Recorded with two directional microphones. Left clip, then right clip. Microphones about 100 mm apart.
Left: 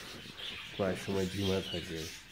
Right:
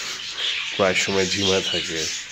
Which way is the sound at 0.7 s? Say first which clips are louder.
Right 14 dB; 35° right (ahead or behind).